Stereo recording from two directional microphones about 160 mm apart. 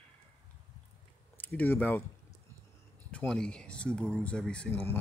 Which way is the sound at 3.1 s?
5° left (ahead or behind).